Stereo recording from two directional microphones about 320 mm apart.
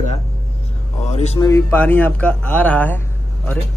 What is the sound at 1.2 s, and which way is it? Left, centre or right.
Speech, centre.